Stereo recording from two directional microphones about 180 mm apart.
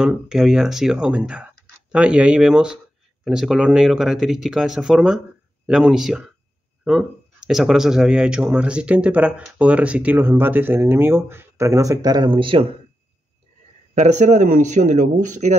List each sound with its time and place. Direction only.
0.0 s speech: 5° right (ahead or behind); by 12.6 s 30° right (ahead or behind)
13.9 s a man's voice: 40° right (ahead or behind)